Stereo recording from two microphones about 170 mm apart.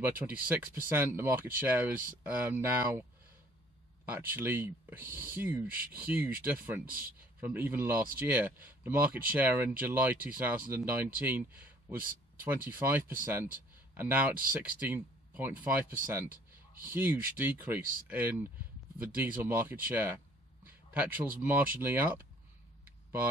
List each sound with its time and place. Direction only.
0.0 s speech: 10° right (ahead or behind)
16.9 s speech: 10° right (ahead or behind)